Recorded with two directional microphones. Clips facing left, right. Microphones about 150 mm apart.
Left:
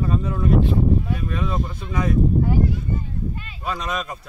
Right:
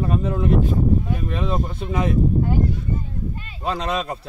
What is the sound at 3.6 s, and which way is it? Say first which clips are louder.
Speech: right 4 dB; 30° right (ahead or behind).